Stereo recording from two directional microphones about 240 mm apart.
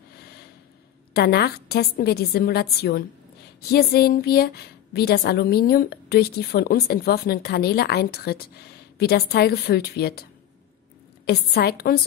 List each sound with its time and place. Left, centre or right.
1.1 s a woman's voice: left
11.2 s a woman's voice: left